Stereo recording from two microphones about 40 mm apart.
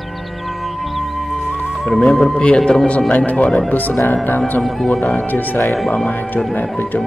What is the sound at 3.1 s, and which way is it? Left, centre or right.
Speech, left.